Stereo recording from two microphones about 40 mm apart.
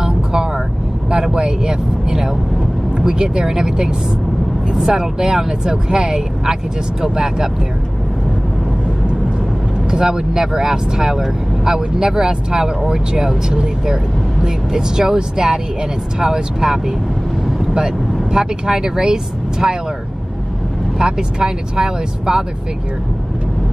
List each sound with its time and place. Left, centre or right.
0.0 s vehicle: centre
1.1 s speech: right
9.8 s speech: centre
21.0 s speech: right